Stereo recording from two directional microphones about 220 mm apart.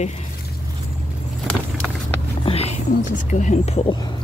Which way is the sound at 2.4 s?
25° left (ahead or behind).